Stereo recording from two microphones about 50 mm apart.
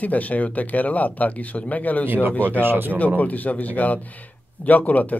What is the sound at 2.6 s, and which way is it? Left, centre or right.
Speech, right.